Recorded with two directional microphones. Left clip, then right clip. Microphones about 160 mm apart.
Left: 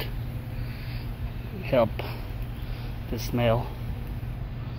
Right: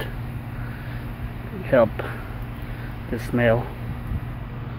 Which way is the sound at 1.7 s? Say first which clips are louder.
Right 5 dB; 20° right (ahead or behind).